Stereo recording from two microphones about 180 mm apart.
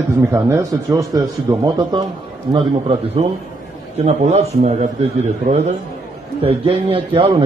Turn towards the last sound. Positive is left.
turn(degrees=-30)  # may be behind; listen again after turning